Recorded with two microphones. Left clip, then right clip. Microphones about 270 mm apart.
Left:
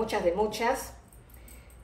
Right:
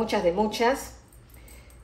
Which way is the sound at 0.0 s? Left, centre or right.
Right.